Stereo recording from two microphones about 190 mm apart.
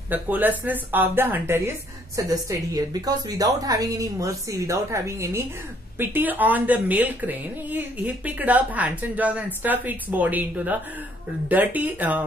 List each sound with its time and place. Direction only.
0.1 s a woman's voice: 10° right (ahead or behind)